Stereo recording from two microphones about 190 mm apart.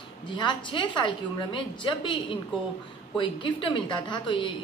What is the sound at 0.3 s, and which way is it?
A woman's voice, 25° left (ahead or behind).